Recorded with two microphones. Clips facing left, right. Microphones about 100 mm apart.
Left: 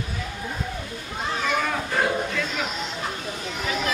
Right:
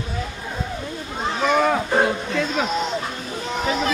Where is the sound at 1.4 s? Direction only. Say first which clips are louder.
Right 8 dB; 35° right (ahead or behind).